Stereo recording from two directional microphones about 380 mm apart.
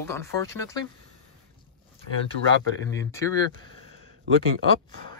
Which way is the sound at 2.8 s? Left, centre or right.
Centre.